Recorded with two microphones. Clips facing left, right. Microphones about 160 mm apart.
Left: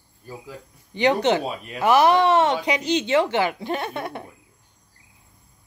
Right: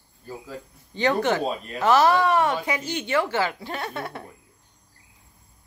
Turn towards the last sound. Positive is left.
turn(degrees=20)  # may be behind; listen again after turning